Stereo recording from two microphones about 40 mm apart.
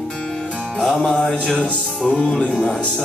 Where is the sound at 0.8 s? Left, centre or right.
Left.